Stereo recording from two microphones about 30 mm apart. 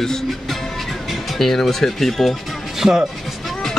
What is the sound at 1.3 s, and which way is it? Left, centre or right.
Speech, centre.